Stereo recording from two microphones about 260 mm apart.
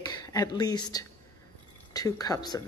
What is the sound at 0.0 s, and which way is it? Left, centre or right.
A woman's voice, centre.